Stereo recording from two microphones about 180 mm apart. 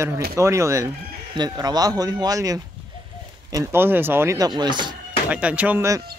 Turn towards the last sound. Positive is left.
turn(degrees=-15)  # may be behind; listen again after turning